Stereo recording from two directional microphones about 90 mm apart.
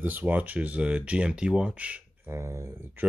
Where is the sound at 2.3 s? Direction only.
35° right (ahead or behind).